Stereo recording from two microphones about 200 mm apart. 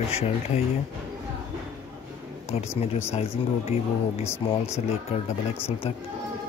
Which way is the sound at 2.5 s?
30° left (ahead or behind).